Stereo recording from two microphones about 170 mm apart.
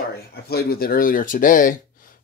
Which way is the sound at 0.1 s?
65° left (ahead or behind).